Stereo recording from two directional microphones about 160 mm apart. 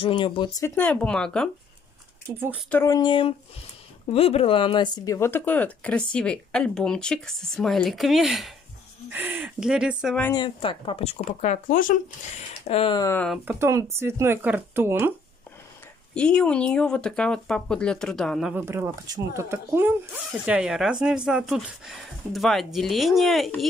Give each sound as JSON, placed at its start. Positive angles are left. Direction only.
{"t": 0.0, "sound": "speech", "side_deg": 30}
{"t": 0.7, "sound": "speech", "side_deg": 10}
{"t": 2.3, "sound": "speech", "side_deg": -10}
{"t": 2.7, "sound": "speech", "side_deg": 20}
{"t": 9.1, "sound": "speech", "side_deg": -10}
{"t": 10.3, "sound": "speech", "side_deg": 30}
{"t": 13.0, "sound": "speech", "side_deg": 15}
{"t": 13.5, "sound": "speech", "side_deg": -15}
{"t": 16.2, "sound": "speech", "side_deg": 5}
{"t": 18.5, "sound": "speech", "side_deg": -15}